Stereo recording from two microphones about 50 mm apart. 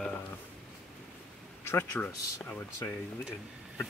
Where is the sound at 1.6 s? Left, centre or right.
Left.